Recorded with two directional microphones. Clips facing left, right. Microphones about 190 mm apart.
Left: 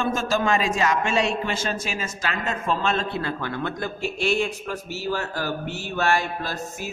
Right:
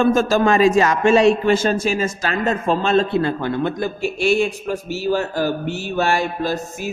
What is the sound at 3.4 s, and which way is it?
A man's voice, 20° right (ahead or behind).